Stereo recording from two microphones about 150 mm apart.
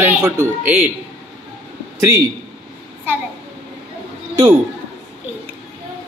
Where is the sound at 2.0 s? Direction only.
20° right (ahead or behind).